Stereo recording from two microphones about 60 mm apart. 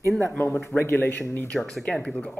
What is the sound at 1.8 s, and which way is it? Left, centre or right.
Speech, centre.